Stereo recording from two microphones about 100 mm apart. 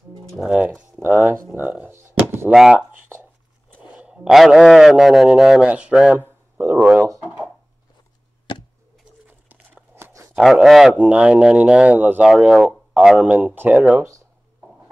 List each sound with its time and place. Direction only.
0.4 s speech: 10° right (ahead or behind)
1.0 s speech: 15° right (ahead or behind)
2.5 s speech: 5° right (ahead or behind)
7.2 s a sound: 15° right (ahead or behind)
9.5 s a sound: 20° right (ahead or behind)
10.3 s speech: 5° right (ahead or behind)